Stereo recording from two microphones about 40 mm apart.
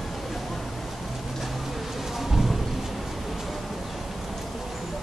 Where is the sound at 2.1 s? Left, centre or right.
Centre.